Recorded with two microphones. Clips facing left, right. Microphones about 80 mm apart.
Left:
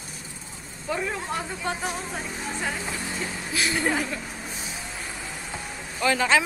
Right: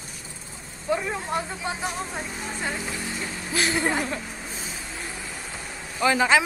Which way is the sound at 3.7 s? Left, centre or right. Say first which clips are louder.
Left 1 dB; centre.